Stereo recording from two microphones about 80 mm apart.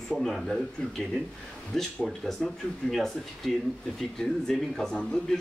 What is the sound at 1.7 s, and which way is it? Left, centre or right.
Speech, centre.